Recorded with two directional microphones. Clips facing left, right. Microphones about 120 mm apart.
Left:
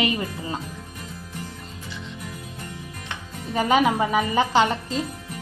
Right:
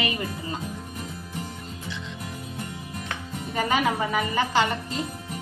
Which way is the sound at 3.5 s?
20° left (ahead or behind).